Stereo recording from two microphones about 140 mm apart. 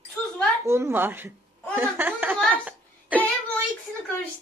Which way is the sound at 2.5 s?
10° right (ahead or behind).